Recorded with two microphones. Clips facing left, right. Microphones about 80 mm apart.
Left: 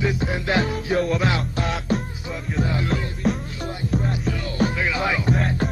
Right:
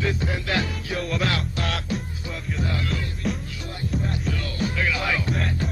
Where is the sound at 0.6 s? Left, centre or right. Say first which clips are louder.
Left 6 dB; left.